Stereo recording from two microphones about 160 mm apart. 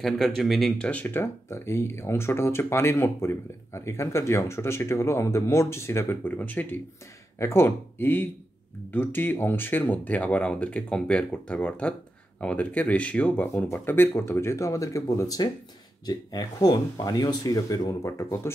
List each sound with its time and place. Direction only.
0.0 s speech: centre (ahead or behind); by 18.5 s 15° left (ahead or behind)